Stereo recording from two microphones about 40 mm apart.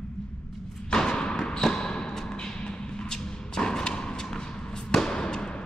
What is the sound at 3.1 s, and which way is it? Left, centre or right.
Thump, centre.